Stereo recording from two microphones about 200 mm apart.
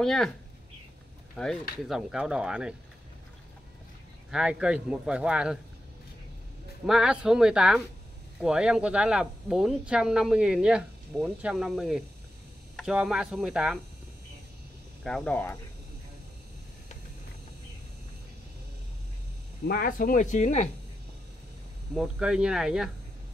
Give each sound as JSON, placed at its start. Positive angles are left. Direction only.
{"t": 0.0, "sound": "speech", "side_deg": 0}
{"t": 1.3, "sound": "speech", "side_deg": 5}
{"t": 4.3, "sound": "speech", "side_deg": -5}
{"t": 6.9, "sound": "speech", "side_deg": -5}
{"t": 15.0, "sound": "speech", "side_deg": 5}
{"t": 19.7, "sound": "speech", "side_deg": 45}
{"t": 21.9, "sound": "speech", "side_deg": -5}